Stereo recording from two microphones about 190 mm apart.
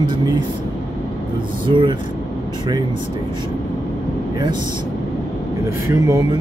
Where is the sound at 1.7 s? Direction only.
25° right (ahead or behind).